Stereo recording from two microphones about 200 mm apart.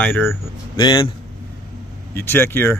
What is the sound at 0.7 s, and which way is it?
Speech, 25° left (ahead or behind).